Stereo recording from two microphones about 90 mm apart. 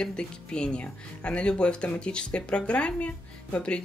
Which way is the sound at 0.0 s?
10° left (ahead or behind).